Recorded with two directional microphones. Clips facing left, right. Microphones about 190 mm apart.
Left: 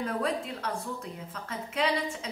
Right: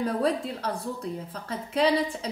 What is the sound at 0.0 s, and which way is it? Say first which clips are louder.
A woman's voice: right 5 dB; 35° right (ahead or behind).